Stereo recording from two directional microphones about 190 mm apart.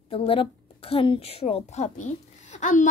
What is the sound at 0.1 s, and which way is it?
A woman's voice, 30° left (ahead or behind).